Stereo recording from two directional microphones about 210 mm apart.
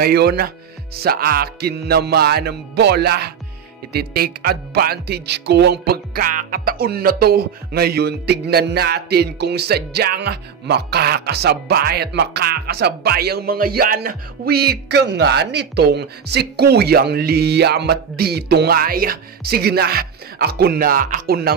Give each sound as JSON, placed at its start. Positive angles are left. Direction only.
{"t": 0.0, "sound": "speech", "side_deg": -50}